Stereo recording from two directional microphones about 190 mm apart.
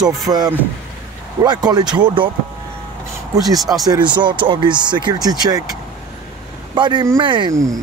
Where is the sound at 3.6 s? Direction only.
Centre (ahead or behind).